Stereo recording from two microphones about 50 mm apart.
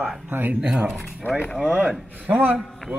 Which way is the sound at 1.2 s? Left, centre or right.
Left.